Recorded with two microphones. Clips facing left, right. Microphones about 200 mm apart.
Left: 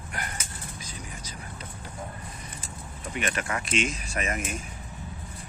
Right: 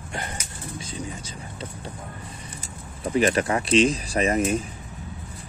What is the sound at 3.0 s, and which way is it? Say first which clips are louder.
Speech: right 11 dB; 35° right (ahead or behind).